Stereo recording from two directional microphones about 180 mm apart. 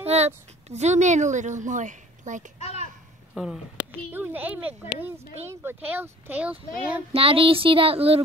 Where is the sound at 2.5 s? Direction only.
35° left (ahead or behind).